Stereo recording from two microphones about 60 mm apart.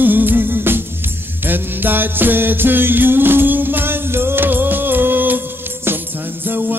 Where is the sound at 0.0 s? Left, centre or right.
Right.